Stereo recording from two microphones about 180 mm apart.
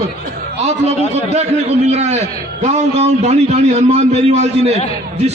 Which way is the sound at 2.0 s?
35° right (ahead or behind).